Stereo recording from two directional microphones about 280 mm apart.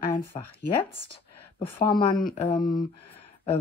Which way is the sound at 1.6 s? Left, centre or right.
Centre.